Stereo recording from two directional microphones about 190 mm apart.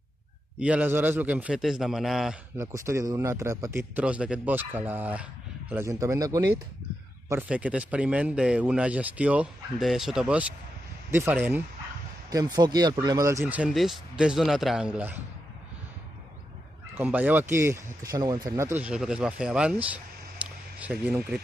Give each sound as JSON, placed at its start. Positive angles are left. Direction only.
{"t": 0.6, "sound": "a man's voice", "side_deg": -5}
{"t": 2.5, "sound": "speech", "side_deg": -15}
{"t": 12.3, "sound": "speech", "side_deg": -20}
{"t": 13.4, "sound": "a man's voice", "side_deg": -5}
{"t": 16.9, "sound": "speech", "side_deg": -10}